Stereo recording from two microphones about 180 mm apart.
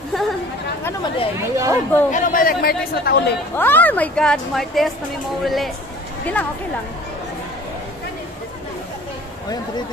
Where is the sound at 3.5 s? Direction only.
10° left (ahead or behind).